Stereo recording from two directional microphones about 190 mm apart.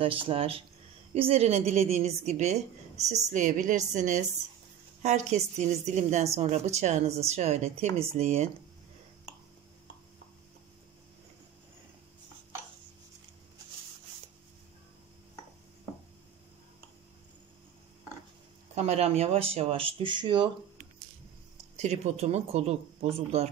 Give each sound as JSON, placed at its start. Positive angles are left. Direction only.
{"t": 0.0, "sound": "a woman's voice", "side_deg": -30}
{"t": 18.8, "sound": "a woman's voice", "side_deg": -35}
{"t": 21.7, "sound": "a woman's voice", "side_deg": -35}